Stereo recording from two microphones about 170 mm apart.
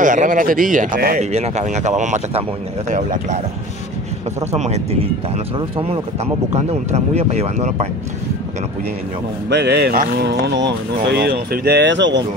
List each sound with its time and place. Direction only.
0.0 s speech: 50° right (ahead or behind)
1.3 s speech: 40° right (ahead or behind)
4.5 s speech: 40° right (ahead or behind)
6.5 s speech: 40° right (ahead or behind)
9.5 s speech: 75° right (ahead or behind)